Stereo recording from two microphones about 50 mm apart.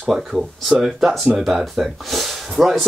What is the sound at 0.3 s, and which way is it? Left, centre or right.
Speech, centre.